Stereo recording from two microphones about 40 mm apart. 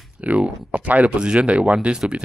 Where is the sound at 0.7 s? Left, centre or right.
Right.